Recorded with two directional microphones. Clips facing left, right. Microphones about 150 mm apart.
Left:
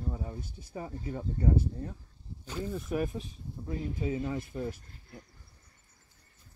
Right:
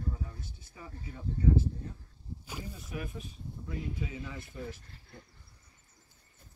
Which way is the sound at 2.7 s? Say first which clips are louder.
Left 12 dB; 50° left (ahead or behind).